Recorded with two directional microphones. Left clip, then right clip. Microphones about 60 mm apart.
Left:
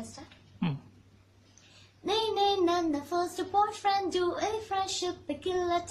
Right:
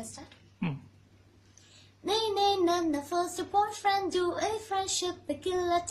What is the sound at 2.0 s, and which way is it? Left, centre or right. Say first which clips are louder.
Child singing: even; right.